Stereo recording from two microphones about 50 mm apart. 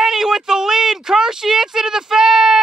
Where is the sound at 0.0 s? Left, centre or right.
Centre.